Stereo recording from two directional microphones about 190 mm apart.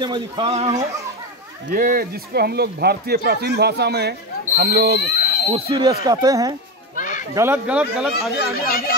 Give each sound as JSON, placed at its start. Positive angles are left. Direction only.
{"t": 0.0, "sound": "a man's voice", "side_deg": -25}
{"t": 1.7, "sound": "speech", "side_deg": -45}
{"t": 5.1, "sound": "a sound", "side_deg": 50}
{"t": 5.5, "sound": "a man's voice", "side_deg": -30}
{"t": 5.9, "sound": "speech", "side_deg": -20}
{"t": 7.0, "sound": "children playing", "side_deg": 40}
{"t": 7.3, "sound": "speech", "side_deg": -10}
{"t": 8.5, "sound": "speech", "side_deg": 55}